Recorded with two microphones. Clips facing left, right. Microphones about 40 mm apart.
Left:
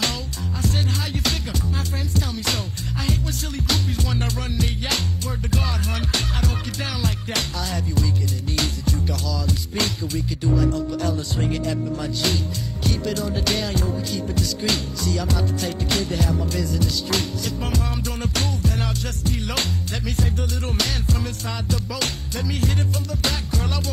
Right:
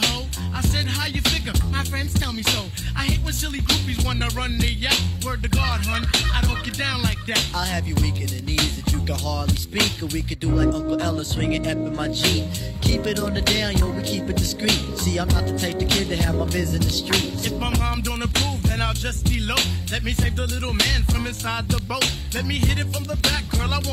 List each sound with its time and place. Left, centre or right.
0.6 s music: right